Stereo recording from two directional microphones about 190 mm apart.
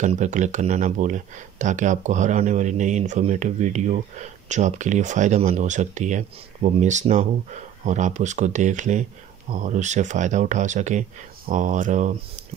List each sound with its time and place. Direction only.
0.0 s speech: 40° right (ahead or behind)